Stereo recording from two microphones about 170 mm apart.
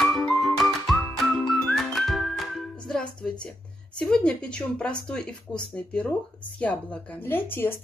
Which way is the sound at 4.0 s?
5° left (ahead or behind).